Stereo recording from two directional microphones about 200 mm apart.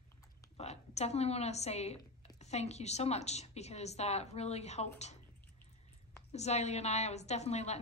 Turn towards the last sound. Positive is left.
turn(degrees=35)  # may be behind; listen again after turning